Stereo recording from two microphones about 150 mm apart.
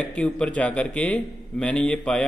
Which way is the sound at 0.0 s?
10° left (ahead or behind).